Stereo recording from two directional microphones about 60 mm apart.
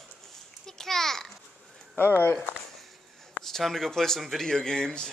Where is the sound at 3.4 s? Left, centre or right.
Centre.